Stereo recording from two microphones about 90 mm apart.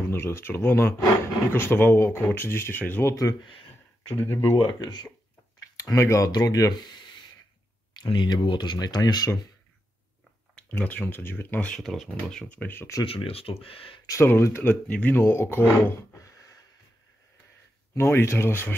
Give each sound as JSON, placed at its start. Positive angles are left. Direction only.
{"t": 0.1, "sound": "speech", "side_deg": 25}
{"t": 4.6, "sound": "speech", "side_deg": 50}
{"t": 5.8, "sound": "speech", "side_deg": 35}
{"t": 8.0, "sound": "speech", "side_deg": 60}
{"t": 10.8, "sound": "speech", "side_deg": 15}
{"t": 11.6, "sound": "speech", "side_deg": 5}
{"t": 12.7, "sound": "speech", "side_deg": 30}
{"t": 13.0, "sound": "speech", "side_deg": 90}
{"t": 14.2, "sound": "speech", "side_deg": 25}
{"t": 17.9, "sound": "speech", "side_deg": 30}